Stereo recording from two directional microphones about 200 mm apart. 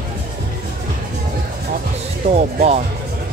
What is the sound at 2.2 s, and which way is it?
Speech, 30° right (ahead or behind).